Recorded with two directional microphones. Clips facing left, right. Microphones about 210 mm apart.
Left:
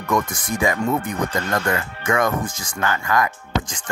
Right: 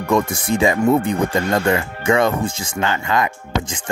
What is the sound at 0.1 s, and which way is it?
Speech, 25° right (ahead or behind).